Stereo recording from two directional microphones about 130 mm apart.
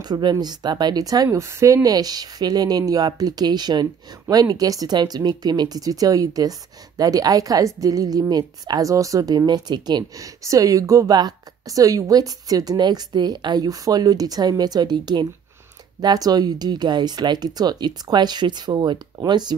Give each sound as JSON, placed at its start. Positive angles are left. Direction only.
{"t": 0.0, "sound": "a woman's voice", "side_deg": -35}